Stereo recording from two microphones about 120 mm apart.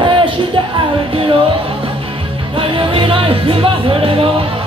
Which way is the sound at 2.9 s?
50° right (ahead or behind).